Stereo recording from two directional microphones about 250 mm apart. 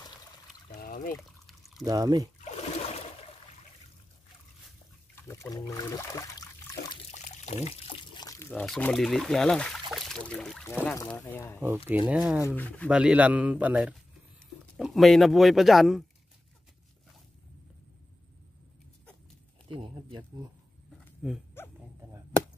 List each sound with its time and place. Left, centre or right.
0.7 s trickle: left
1.9 s speech: centre
2.4 s a sound: left
5.3 s speech: centre
7.1 s pour: left; by 9.8 s centre
9.9 s speech: centre
11.9 s speech: centre
12.4 s speech: centre
19.7 s speech: centre
21.0 s dog: centre